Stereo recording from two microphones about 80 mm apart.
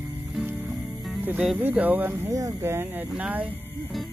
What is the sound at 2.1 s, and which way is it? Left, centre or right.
Speech, right.